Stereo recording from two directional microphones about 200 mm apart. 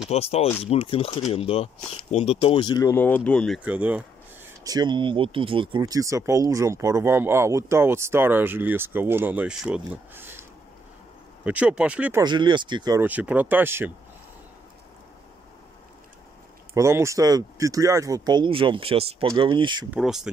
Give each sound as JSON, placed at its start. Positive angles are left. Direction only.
{"t": 0.1, "sound": "speech", "side_deg": 30}
{"t": 4.6, "sound": "speech", "side_deg": -20}
{"t": 11.4, "sound": "speech", "side_deg": -5}
{"t": 12.2, "sound": "speech", "side_deg": -20}
{"t": 13.0, "sound": "speech", "side_deg": -10}
{"t": 16.7, "sound": "speech", "side_deg": -15}
{"t": 19.9, "sound": "speech", "side_deg": 0}